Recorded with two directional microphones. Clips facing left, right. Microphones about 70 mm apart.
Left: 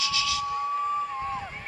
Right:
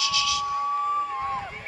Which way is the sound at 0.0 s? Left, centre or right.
Left.